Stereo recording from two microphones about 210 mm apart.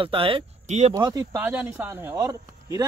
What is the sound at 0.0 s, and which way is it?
Speech, 25° right (ahead or behind).